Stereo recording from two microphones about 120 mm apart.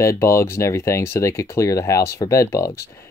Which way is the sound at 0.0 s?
25° left (ahead or behind).